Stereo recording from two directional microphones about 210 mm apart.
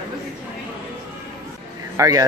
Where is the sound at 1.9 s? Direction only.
15° right (ahead or behind).